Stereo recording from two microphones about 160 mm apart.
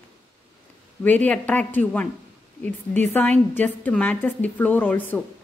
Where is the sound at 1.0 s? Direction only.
10° left (ahead or behind).